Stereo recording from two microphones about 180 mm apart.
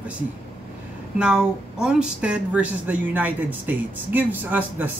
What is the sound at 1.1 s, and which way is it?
Speech, 5° right (ahead or behind).